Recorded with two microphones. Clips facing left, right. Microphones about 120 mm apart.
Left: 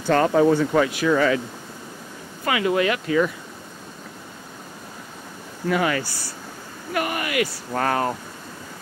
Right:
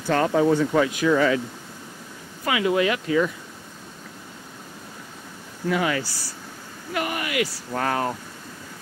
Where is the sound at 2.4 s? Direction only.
15° right (ahead or behind).